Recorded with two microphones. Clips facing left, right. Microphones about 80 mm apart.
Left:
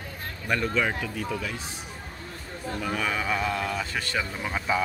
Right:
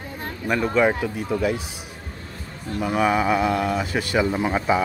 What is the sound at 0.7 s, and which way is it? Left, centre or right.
Speech, right.